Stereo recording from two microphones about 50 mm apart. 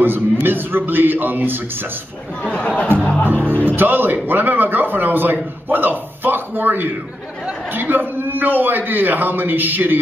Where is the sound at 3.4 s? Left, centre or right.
Right.